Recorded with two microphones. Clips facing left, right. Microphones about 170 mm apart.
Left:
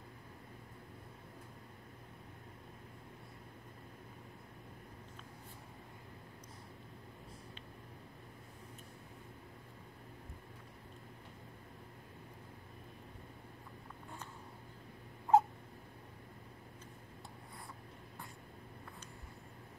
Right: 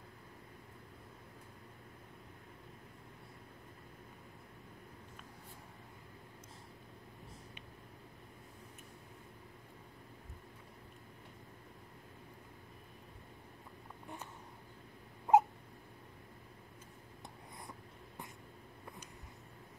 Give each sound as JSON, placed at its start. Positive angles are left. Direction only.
{"t": 15.3, "sound": "dog", "side_deg": -20}